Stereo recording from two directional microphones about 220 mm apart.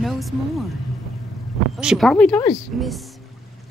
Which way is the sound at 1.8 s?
Centre (ahead or behind).